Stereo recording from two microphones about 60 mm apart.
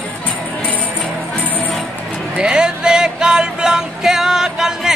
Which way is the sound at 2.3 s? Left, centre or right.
Centre.